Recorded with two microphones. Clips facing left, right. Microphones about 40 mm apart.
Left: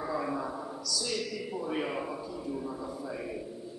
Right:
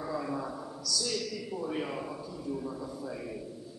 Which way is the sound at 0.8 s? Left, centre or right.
Centre.